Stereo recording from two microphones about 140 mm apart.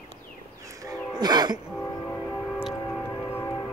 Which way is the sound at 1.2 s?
30° right (ahead or behind).